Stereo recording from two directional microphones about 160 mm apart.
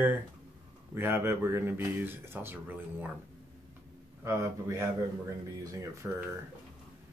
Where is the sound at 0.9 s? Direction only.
15° right (ahead or behind).